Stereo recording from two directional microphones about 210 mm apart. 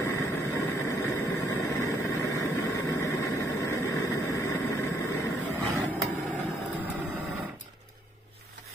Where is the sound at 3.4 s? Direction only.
15° left (ahead or behind).